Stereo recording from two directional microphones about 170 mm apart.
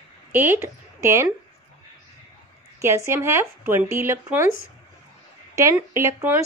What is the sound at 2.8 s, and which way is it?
Speech, 15° right (ahead or behind).